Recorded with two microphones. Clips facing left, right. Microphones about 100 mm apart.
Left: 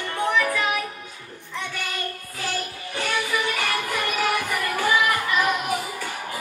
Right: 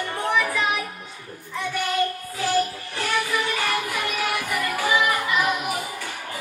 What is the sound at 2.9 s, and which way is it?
Music, centre (ahead or behind).